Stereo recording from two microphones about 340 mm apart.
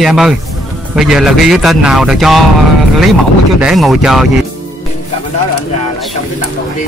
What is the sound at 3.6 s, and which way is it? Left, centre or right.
Speech, centre.